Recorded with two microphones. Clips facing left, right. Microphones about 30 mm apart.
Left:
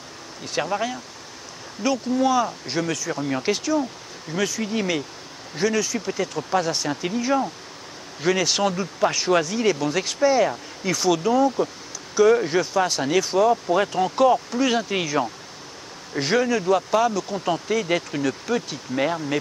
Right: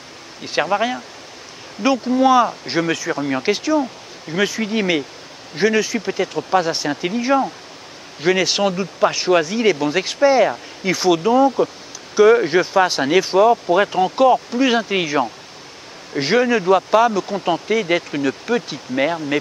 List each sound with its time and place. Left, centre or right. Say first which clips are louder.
0.4 s speech: right 6 dB; right